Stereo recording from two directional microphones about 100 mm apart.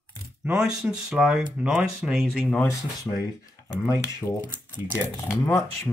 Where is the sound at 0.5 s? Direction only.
10° right (ahead or behind).